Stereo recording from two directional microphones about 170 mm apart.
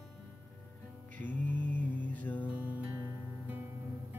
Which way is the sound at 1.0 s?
10° left (ahead or behind).